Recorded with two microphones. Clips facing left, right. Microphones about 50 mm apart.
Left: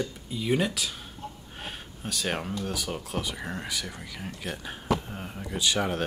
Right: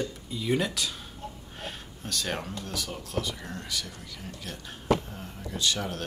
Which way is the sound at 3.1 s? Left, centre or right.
Left.